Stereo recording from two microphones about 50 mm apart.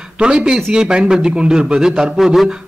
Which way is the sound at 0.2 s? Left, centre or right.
Centre.